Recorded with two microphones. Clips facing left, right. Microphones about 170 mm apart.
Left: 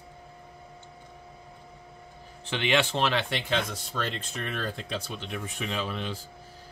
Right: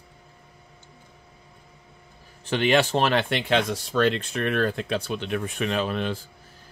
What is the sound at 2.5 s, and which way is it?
Speech, 45° right (ahead or behind).